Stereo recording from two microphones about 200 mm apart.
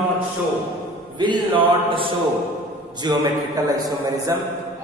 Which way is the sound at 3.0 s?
20° right (ahead or behind).